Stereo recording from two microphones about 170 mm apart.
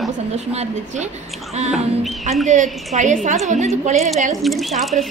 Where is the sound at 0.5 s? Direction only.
40° right (ahead or behind).